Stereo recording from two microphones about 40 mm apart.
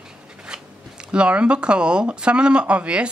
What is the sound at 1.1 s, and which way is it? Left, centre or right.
Speech, right.